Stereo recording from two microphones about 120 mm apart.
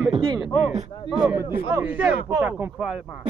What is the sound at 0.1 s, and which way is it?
Speech, 50° right (ahead or behind).